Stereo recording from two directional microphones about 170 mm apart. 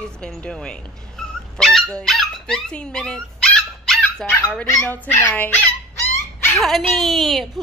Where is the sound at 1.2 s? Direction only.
5° left (ahead or behind).